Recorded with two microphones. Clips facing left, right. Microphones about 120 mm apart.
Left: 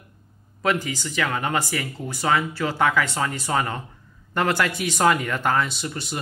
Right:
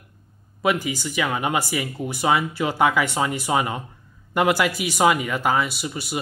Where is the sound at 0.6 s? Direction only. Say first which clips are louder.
Right 1 dB; 10° right (ahead or behind).